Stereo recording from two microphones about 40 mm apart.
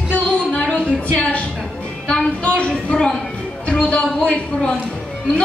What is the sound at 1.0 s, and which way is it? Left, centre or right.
Speech, left.